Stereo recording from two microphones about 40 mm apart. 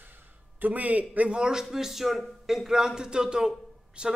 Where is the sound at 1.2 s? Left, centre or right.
Right.